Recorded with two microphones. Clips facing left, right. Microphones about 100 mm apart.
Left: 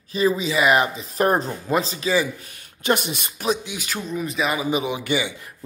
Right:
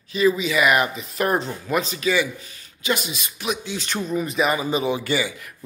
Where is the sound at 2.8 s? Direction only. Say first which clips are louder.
Left 3 dB; 55° left (ahead or behind).